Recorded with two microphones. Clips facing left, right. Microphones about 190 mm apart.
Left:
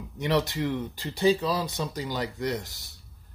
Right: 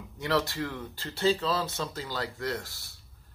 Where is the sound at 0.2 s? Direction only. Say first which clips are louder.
Left 3 dB; 20° left (ahead or behind).